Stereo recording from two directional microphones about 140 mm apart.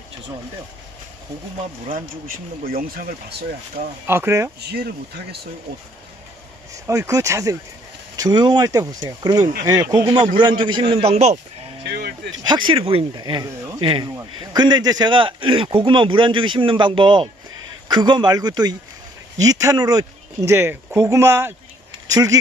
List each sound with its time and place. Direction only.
1.9 s speech: 85° right
4.1 s speech: 20° right (ahead or behind)
6.9 s speech: 25° right (ahead or behind); by 11.3 s 45° right (ahead or behind)
12.4 s speech: 35° right (ahead or behind)
13.1 s speech: 30° right (ahead or behind)